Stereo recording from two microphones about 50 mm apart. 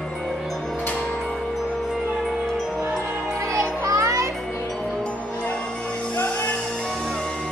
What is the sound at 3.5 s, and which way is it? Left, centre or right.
Music, right.